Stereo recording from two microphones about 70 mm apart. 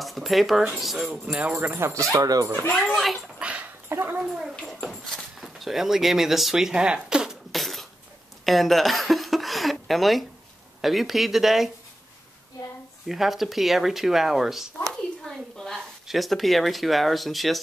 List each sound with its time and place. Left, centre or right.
0.0 s speech: centre
1.8 s speech: right
2.2 s speech: right
2.7 s speech: centre
3.0 s speech: centre
3.3 s dog: centre
3.9 s speech: right
4.2 s speech: centre
4.8 s speech: centre
7.5 s a sound: centre
10.8 s speech: centre
13.0 s speech: centre
14.9 s a sound: centre